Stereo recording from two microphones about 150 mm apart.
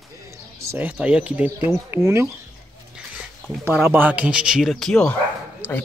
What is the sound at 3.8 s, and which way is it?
Speech, 10° right (ahead or behind).